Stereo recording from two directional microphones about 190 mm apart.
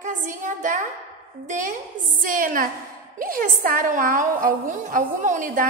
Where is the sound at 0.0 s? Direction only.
40° right (ahead or behind).